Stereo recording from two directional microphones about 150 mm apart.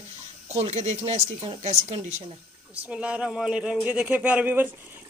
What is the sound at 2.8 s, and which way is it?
Speech, 10° right (ahead or behind).